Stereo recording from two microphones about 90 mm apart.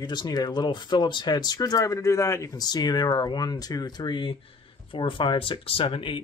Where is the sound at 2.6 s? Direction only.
50° left (ahead or behind).